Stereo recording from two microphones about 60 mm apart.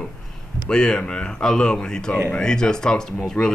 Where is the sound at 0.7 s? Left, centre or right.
Centre.